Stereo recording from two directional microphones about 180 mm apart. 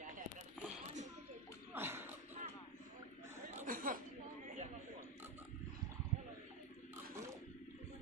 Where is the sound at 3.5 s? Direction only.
45° right (ahead or behind).